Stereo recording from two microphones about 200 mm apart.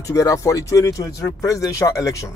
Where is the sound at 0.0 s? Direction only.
15° left (ahead or behind).